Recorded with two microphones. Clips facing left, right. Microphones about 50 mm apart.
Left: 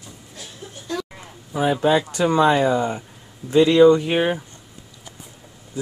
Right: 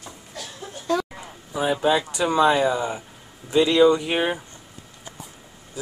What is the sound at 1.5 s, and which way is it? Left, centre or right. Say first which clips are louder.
Speech: left 3 dB; centre.